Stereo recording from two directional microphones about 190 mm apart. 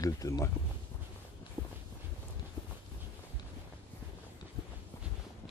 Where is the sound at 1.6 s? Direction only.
15° right (ahead or behind).